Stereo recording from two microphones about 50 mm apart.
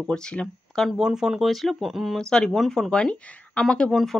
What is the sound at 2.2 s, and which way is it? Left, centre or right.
Speech, centre.